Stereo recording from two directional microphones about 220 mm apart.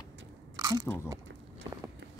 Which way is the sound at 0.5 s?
15° right (ahead or behind).